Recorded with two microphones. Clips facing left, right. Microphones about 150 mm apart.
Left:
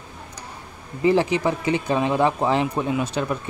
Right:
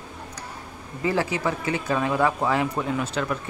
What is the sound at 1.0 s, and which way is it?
Speech, 20° left (ahead or behind).